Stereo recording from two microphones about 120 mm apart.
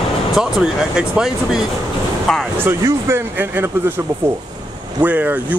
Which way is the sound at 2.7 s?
20° right (ahead or behind).